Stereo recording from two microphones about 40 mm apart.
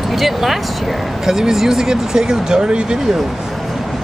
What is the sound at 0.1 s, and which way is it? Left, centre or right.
Speech, centre.